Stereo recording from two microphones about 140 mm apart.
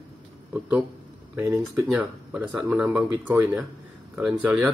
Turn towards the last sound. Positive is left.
turn(degrees=-5)  # may be behind; listen again after turning